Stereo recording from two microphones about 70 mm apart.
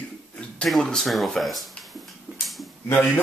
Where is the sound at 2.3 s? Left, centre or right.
Centre.